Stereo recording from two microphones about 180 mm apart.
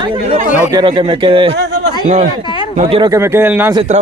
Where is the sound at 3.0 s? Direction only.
15° right (ahead or behind).